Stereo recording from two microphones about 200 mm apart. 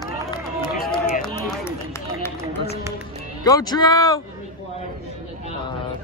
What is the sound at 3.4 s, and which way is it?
Speech, 20° left (ahead or behind).